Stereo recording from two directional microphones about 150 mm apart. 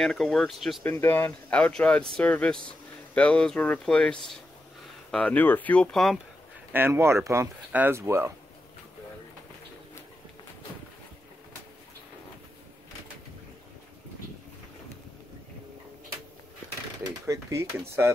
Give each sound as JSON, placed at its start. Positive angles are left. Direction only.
{"t": 0.0, "sound": "speech", "side_deg": 5}
{"t": 0.8, "sound": "speech", "side_deg": 15}
{"t": 6.7, "sound": "speech", "side_deg": -15}
{"t": 17.0, "sound": "a sound", "side_deg": -20}